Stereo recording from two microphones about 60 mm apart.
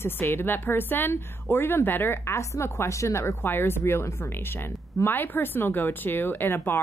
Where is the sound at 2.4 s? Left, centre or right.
Left.